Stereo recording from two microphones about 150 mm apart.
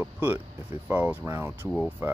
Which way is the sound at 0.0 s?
15° right (ahead or behind).